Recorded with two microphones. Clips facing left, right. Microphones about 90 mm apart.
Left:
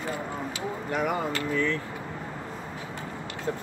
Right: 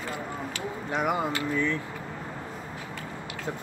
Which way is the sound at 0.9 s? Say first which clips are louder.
Right 1 dB; 20° right (ahead or behind).